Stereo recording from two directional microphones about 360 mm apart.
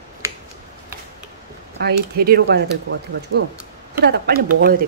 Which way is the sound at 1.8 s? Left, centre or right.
Right.